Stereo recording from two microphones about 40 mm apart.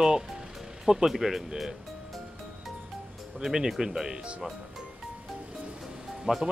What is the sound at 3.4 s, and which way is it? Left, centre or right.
Speech, centre.